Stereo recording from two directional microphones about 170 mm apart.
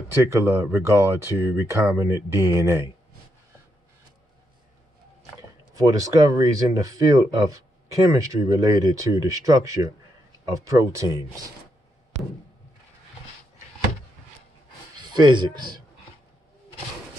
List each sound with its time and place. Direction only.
0.2 s speech: 15° right (ahead or behind)
5.8 s speech: 20° right (ahead or behind)
15.0 s a man's voice: 25° right (ahead or behind)